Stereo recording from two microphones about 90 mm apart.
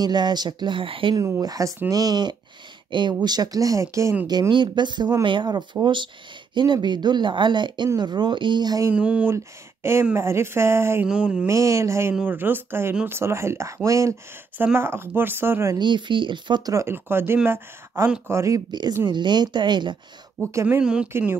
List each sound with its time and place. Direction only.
0.0 s speech: 50° right (ahead or behind); by 1.1 s 75° right (ahead or behind)
1.1 s speech: 40° right (ahead or behind)
4.3 s speech: 55° right (ahead or behind)
8.9 s speech: 10° right (ahead or behind)
10.1 s speech: 30° right (ahead or behind)
11.1 s speech: 10° right (ahead or behind)
11.4 s speech: 35° right (ahead or behind)
14.6 s speech: 25° right (ahead or behind)
15.8 s speech: 65° right (ahead or behind)
16.8 s speech: 25° right (ahead or behind)
18.7 s speech: 55° right (ahead or behind)
20.4 s speech: 35° right (ahead or behind)
20.8 s speech: 10° right (ahead or behind)